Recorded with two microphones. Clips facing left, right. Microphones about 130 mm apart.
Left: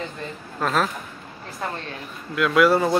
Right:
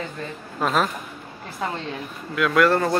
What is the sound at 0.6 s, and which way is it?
Speech, 5° right (ahead or behind).